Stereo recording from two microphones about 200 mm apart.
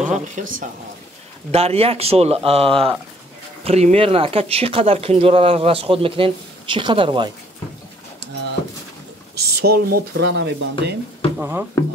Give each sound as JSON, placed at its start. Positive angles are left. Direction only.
{"t": 0.0, "sound": "speech", "side_deg": -40}
{"t": 1.5, "sound": "speech", "side_deg": -30}
{"t": 9.3, "sound": "speech", "side_deg": -55}
{"t": 11.3, "sound": "speech", "side_deg": -10}